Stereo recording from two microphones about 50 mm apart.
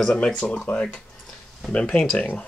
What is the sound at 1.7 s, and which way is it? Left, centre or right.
Speech, left.